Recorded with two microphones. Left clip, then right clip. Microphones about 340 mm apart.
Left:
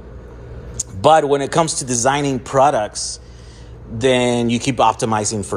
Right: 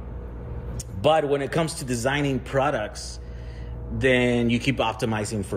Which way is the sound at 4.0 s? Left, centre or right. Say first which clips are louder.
Left 5 dB; centre.